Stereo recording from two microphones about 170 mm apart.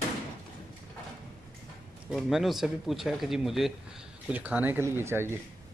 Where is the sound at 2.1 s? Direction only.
Centre (ahead or behind).